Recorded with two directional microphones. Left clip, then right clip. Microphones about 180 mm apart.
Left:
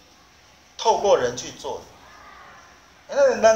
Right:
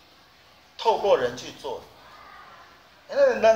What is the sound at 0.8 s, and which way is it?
Speech, 15° left (ahead or behind).